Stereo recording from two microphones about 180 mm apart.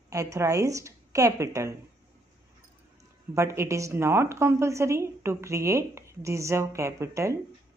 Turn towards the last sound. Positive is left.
turn(degrees=-15)  # may be behind; listen again after turning